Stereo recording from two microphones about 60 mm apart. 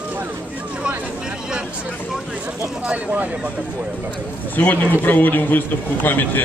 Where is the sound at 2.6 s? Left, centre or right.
Right.